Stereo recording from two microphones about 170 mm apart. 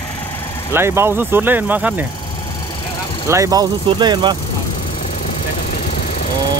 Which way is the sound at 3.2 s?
20° right (ahead or behind).